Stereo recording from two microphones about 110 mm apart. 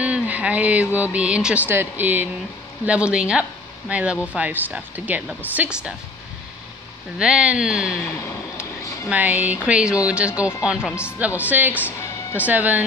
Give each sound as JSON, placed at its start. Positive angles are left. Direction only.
{"t": 0.0, "sound": "speech", "side_deg": -10}
{"t": 7.2, "sound": "speech", "side_deg": -10}
{"t": 8.1, "sound": "a sound", "side_deg": 25}
{"t": 9.1, "sound": "speech", "side_deg": -15}
{"t": 11.8, "sound": "music", "side_deg": 25}
{"t": 12.4, "sound": "speech", "side_deg": -15}